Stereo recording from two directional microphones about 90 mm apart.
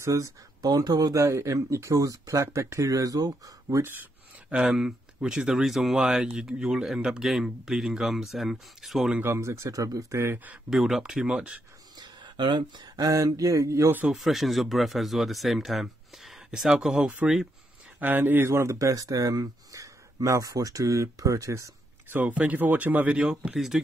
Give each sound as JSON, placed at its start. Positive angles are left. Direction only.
{"t": 0.0, "sound": "speech", "side_deg": -35}
{"t": 3.8, "sound": "a sound", "side_deg": -20}
{"t": 4.6, "sound": "speech", "side_deg": -5}
{"t": 9.2, "sound": "speech", "side_deg": -30}
{"t": 10.2, "sound": "speech", "side_deg": -20}
{"t": 10.7, "sound": "speech", "side_deg": -5}
{"t": 12.0, "sound": "speech", "side_deg": -55}
{"t": 14.1, "sound": "speech", "side_deg": 0}
{"t": 17.9, "sound": "speech", "side_deg": -20}
{"t": 22.1, "sound": "speech", "side_deg": -15}